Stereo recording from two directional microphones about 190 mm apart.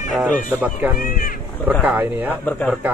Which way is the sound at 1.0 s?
50° left (ahead or behind).